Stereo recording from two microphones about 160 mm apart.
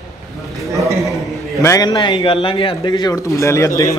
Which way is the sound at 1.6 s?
20° left (ahead or behind).